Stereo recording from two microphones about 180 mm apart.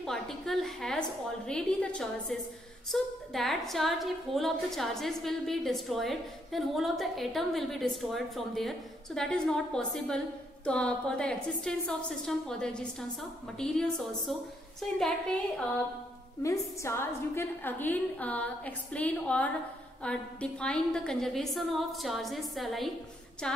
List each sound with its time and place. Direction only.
0.0 s a woman's voice: centre (ahead or behind)
16.4 s a woman's voice: 15° left (ahead or behind)